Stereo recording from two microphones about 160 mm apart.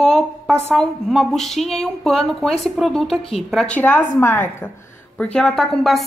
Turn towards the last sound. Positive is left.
turn(degrees=0)  # may be behind; listen again after turning